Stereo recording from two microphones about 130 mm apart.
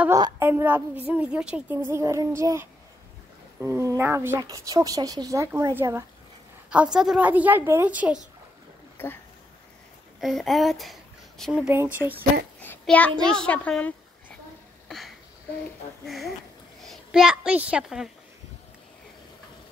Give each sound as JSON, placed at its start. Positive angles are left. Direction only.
{"t": 0.4, "sound": "a woman's voice", "side_deg": -15}
{"t": 6.7, "sound": "a woman's voice", "side_deg": -5}
{"t": 8.9, "sound": "speech", "side_deg": 15}
{"t": 10.2, "sound": "speech", "side_deg": 0}
{"t": 12.0, "sound": "a child's voice", "side_deg": 20}
{"t": 14.9, "sound": "a sound", "side_deg": 0}
{"t": 16.8, "sound": "a woman's voice", "side_deg": 0}